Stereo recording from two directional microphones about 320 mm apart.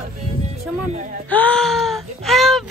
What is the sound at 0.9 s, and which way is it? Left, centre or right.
Speech, right.